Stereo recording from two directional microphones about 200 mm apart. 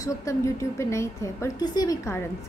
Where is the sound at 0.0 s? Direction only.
15° left (ahead or behind).